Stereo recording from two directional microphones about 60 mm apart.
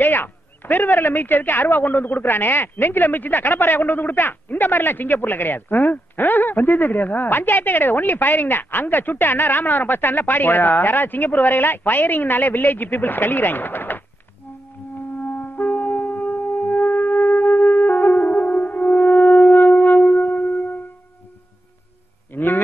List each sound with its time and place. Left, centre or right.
0.0 s speech: left
15.1 s music: left
22.3 s a sound: left